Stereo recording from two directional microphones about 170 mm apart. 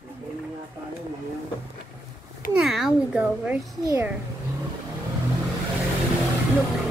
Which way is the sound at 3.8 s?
15° right (ahead or behind).